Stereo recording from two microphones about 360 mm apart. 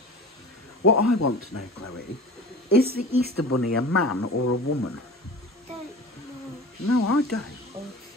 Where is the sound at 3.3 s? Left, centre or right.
Left.